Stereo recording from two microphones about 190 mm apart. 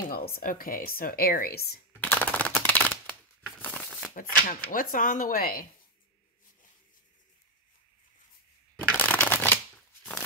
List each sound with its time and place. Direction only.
0.1 s speech: 50° left (ahead or behind)
1.9 s a sound: 10° left (ahead or behind)
4.1 s speech: 45° left (ahead or behind)
8.8 s crushing: 10° left (ahead or behind)